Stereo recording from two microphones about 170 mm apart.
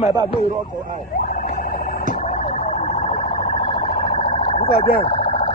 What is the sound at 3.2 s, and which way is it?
Vehicle, 55° left (ahead or behind).